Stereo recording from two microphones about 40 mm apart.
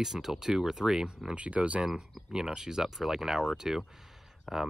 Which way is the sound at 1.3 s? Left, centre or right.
Right.